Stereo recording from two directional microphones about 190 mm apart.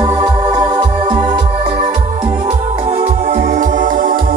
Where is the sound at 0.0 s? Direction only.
20° right (ahead or behind).